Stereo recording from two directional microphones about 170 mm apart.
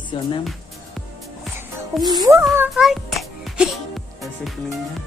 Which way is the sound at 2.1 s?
20° right (ahead or behind).